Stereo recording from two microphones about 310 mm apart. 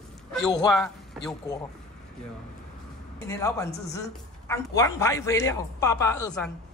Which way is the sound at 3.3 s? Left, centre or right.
Centre.